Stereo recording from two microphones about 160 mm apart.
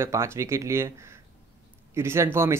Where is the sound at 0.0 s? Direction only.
15° right (ahead or behind).